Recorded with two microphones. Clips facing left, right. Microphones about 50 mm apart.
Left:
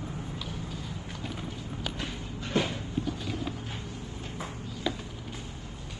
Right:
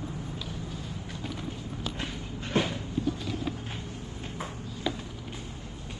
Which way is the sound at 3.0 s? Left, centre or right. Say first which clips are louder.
Right 2 dB; left.